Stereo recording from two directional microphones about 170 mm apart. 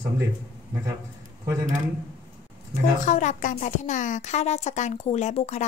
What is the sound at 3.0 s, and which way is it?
A woman's voice, 45° left (ahead or behind).